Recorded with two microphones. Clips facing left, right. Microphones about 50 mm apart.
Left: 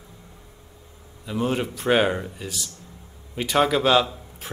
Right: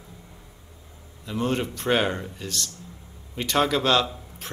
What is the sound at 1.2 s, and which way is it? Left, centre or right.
A man's voice, centre.